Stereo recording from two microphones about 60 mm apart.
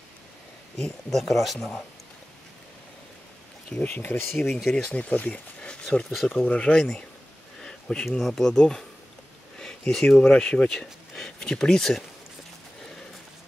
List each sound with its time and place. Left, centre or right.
0.7 s speech: centre
3.8 s speech: left
4.5 s speech: centre
4.7 s speech: left
6.2 s speech: left
7.6 s a sound: centre
8.2 s speech: centre